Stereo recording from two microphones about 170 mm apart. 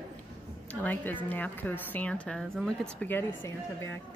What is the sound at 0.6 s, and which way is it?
A woman's voice, 10° left (ahead or behind).